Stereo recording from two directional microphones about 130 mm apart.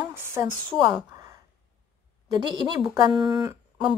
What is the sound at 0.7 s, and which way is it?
Speech, 30° right (ahead or behind).